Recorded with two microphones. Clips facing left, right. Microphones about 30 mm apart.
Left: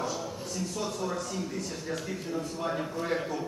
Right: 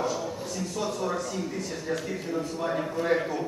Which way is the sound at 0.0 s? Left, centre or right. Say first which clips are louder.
Right 4 dB; centre.